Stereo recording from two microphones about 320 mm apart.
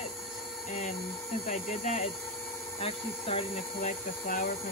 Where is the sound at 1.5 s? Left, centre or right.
Left.